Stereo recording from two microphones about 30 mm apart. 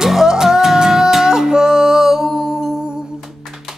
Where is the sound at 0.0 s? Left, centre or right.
Centre.